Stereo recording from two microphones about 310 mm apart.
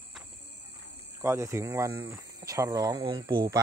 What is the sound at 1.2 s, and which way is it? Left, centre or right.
Speech, centre.